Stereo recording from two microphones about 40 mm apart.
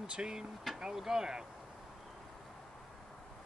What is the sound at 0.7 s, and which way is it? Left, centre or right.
Speech, centre.